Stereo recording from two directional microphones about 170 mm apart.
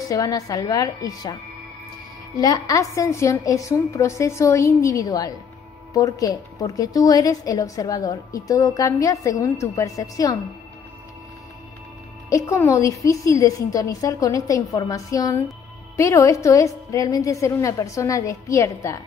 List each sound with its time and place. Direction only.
0.1 s a woman's voice: 20° left (ahead or behind)
2.3 s a woman's voice: 20° left (ahead or behind)
12.3 s a woman's voice: 20° left (ahead or behind)